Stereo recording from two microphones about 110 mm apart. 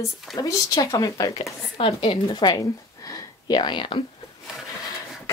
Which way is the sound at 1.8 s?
55° left (ahead or behind).